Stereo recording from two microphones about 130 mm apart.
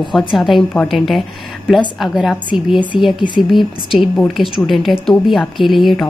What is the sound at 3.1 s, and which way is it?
Speech, 35° left (ahead or behind).